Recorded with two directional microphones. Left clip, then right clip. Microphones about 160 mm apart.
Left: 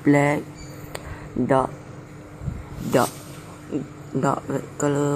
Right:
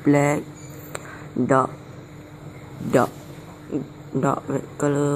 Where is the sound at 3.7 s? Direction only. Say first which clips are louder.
Right 1 dB; 15° right (ahead or behind).